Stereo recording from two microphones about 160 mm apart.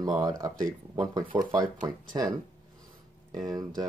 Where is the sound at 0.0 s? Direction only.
25° right (ahead or behind).